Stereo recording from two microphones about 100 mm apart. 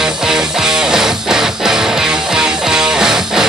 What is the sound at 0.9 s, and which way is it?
Music, 5° right (ahead or behind).